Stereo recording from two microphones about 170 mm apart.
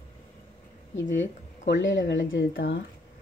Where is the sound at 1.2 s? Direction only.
90° left.